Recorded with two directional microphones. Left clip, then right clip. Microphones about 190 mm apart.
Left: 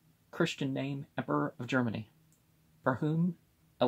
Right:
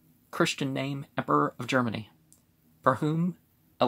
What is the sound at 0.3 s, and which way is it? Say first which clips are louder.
Speech: right 5 dB; 15° right (ahead or behind).